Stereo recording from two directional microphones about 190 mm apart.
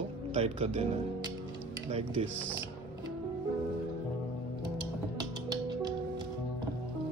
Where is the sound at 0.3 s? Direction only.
35° right (ahead or behind).